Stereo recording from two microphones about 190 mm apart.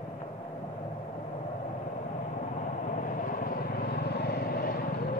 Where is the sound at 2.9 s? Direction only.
45° left (ahead or behind).